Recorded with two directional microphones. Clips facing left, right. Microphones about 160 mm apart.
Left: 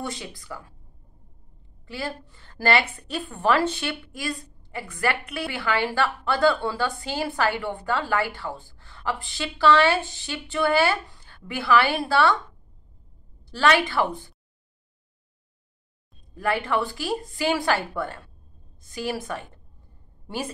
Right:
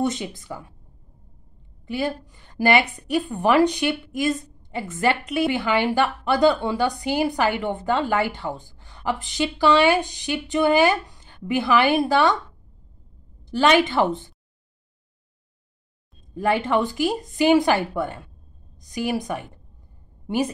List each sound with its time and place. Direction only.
0.0 s a woman's voice: 20° right (ahead or behind)
1.9 s a woman's voice: 15° right (ahead or behind)
13.5 s a woman's voice: 20° right (ahead or behind)
16.3 s a woman's voice: 20° right (ahead or behind)